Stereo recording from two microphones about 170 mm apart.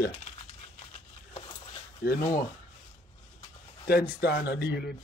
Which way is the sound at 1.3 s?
30° left (ahead or behind).